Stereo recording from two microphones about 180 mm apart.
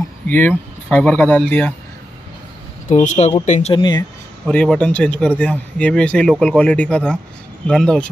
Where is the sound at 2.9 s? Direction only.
40° left (ahead or behind).